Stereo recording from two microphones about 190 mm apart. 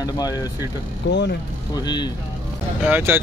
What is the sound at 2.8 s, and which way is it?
Speech, 10° right (ahead or behind).